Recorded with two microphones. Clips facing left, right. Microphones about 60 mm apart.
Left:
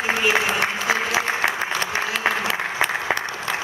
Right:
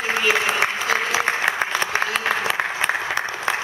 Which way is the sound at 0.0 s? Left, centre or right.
Centre.